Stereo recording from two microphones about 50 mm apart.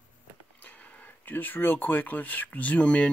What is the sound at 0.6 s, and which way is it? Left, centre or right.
Speech, left.